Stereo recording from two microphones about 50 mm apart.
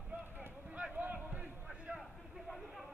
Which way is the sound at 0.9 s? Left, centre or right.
Right.